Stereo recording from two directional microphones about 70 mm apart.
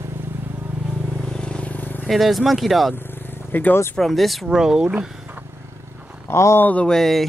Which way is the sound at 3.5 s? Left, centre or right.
Left.